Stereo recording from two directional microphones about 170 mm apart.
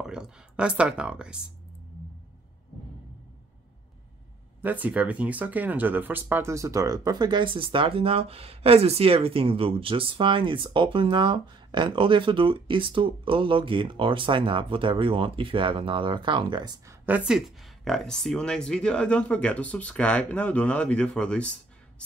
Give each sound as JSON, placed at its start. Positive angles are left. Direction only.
{"t": 0.0, "sound": "speech", "side_deg": -5}
{"t": 4.6, "sound": "speech", "side_deg": -10}
{"t": 17.8, "sound": "speech", "side_deg": 0}